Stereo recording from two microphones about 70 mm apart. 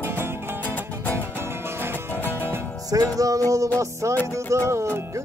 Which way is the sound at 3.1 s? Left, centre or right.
Right.